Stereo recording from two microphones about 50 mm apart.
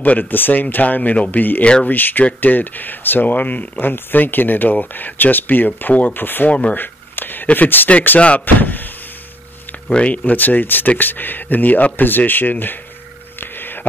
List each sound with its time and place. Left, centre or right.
0.0 s speech: left
1.6 s speech: left
1.9 s speech: left
3.8 s speech: left
6.5 s speech: left
6.8 s a sound: left
7.5 s speech: left
9.8 s speech: left
13.4 s a sound: left